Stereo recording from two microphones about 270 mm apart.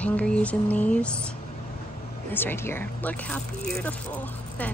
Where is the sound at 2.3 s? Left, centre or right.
Centre.